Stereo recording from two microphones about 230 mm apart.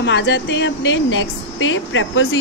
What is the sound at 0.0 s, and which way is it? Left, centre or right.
Speech, left.